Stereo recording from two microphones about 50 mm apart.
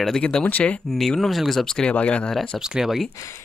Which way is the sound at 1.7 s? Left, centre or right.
Centre.